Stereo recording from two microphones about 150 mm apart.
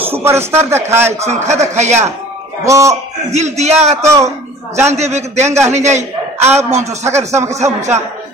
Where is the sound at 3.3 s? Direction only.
45° right (ahead or behind).